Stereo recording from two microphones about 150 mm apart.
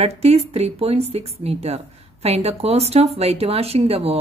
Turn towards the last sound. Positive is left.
turn(degrees=-40)  # may be behind; listen again after turning